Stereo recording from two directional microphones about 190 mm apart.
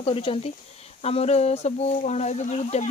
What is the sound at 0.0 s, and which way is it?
Speech, 30° left (ahead or behind).